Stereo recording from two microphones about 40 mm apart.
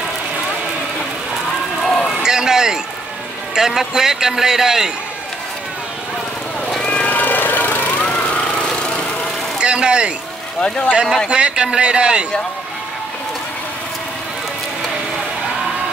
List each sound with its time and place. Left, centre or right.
1.8 s a sound: centre
2.2 s a sound: centre
3.5 s a man's voice: centre
6.8 s vehicle: left
7.1 s vehicle: left
8.0 s lawn mower: left
9.6 s speech: right
11.2 s a man's voice: right